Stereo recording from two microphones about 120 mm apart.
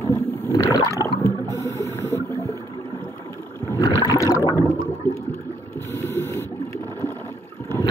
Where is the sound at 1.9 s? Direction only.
20° left (ahead or behind).